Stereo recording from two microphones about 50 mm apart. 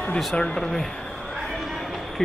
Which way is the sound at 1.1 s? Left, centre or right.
Centre.